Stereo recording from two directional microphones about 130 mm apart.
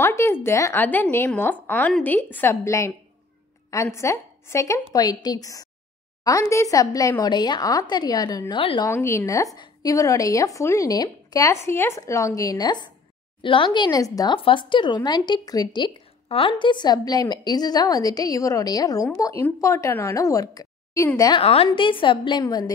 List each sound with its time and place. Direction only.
0.0 s a woman's voice: 20° left (ahead or behind); by 8.8 s 40° left (ahead or behind)
8.8 s speech: 20° left (ahead or behind); by 13.7 s 40° left (ahead or behind)
13.7 s speech: 30° left (ahead or behind)
14.3 s a woman's voice: 40° left (ahead or behind)
16.3 s a woman's voice: 45° left (ahead or behind); by 21.1 s 25° left (ahead or behind)
21.4 s a woman's voice: 45° left (ahead or behind); by 22.7 s 30° left (ahead or behind)